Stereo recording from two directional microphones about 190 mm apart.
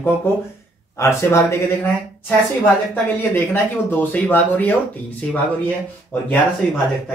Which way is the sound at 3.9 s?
10° left (ahead or behind).